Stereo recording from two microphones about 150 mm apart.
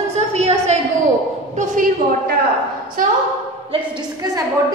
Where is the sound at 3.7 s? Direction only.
30° right (ahead or behind).